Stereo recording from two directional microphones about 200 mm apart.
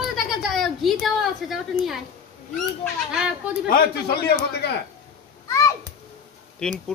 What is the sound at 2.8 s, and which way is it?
Speech, centre (ahead or behind).